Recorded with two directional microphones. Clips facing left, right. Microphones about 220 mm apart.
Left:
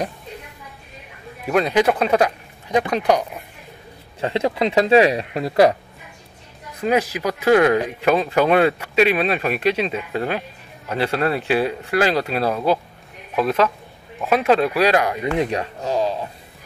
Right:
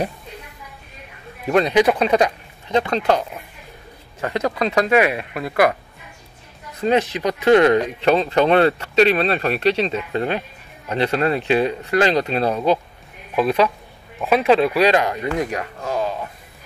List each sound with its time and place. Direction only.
1.5 s speech: 5° left (ahead or behind)
4.2 s speech: 25° left (ahead or behind)
6.8 s speech: 10° left (ahead or behind)
14.2 s speech: centre (ahead or behind)
15.3 s speech: 25° left (ahead or behind)